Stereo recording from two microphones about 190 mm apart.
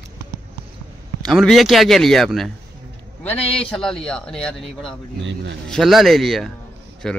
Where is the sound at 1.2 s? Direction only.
Centre (ahead or behind).